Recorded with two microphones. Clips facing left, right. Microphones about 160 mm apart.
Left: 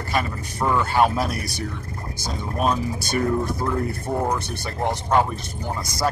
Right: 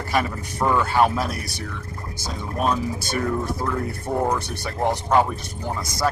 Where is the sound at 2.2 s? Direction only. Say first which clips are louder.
Left 1 dB; centre (ahead or behind).